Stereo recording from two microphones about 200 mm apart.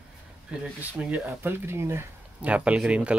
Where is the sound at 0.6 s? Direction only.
5° right (ahead or behind).